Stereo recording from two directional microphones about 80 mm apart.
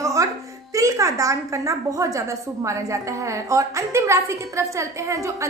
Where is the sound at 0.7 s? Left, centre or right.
Right.